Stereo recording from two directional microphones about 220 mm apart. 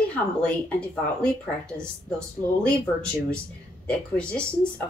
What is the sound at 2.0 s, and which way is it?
Speech, 5° left (ahead or behind).